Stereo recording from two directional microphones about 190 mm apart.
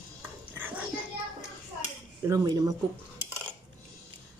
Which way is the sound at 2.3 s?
15° right (ahead or behind).